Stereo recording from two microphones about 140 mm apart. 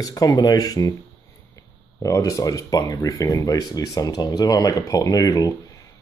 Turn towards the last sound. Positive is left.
turn(degrees=25)  # may be behind; listen again after turning